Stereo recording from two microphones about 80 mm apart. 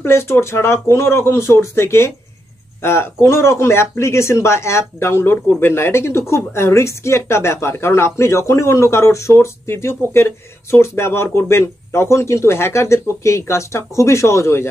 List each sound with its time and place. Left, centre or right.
0.0 s speech: left